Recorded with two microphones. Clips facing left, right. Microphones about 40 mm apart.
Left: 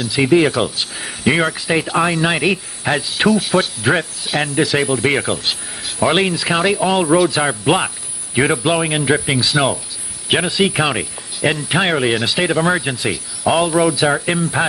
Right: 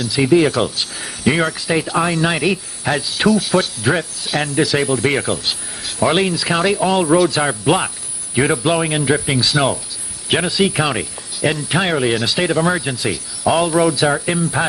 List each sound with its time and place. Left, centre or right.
0.0 s speech: left
0.5 s speech: centre
6.1 s speech: left
6.5 s speech: centre
10.5 s speech: left
13.7 s speech: centre
14.2 s speech: left